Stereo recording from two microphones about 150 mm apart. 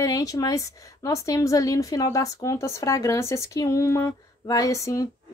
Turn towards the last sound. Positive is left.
turn(degrees=20)  # may be behind; listen again after turning